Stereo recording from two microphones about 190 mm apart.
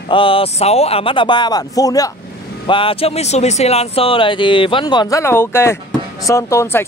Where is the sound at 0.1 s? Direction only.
30° left (ahead or behind).